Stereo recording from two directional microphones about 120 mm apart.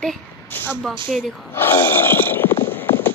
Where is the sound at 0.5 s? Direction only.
15° left (ahead or behind).